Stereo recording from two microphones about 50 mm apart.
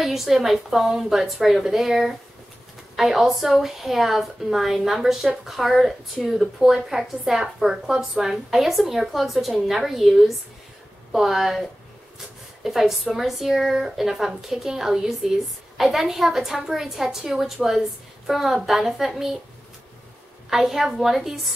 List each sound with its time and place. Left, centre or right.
0.0 s a woman's voice: centre
12.6 s a woman's voice: centre
20.4 s a woman's voice: centre